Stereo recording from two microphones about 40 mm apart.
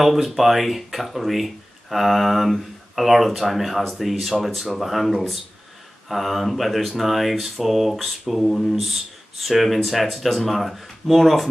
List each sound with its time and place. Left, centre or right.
0.0 s speech: centre